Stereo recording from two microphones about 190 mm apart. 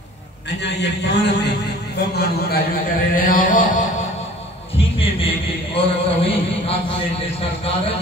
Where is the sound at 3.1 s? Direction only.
45° left (ahead or behind).